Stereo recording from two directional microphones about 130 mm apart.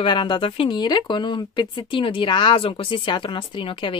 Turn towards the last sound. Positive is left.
turn(degrees=40)  # may be behind; listen again after turning